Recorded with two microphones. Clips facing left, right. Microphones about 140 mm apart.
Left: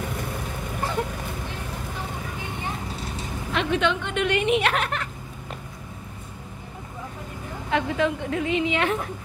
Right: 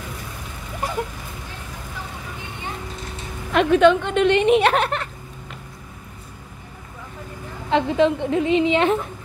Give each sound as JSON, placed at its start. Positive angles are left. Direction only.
{"t": 3.5, "sound": "a woman's voice", "side_deg": -45}
{"t": 7.7, "sound": "a woman's voice", "side_deg": -25}